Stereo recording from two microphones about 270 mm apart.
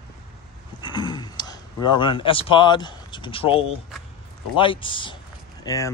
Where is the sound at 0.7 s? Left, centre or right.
Centre.